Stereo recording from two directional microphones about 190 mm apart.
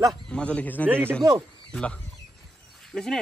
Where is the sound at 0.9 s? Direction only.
10° right (ahead or behind).